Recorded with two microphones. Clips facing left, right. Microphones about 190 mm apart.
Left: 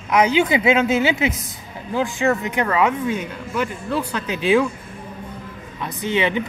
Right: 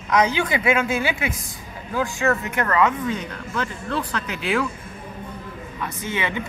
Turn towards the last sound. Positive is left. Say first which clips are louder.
# left 6 dB
turn(degrees=20)  # may be behind; listen again after turning